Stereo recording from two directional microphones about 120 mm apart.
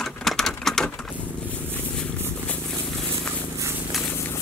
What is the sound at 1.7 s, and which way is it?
Purr, 15° left (ahead or behind).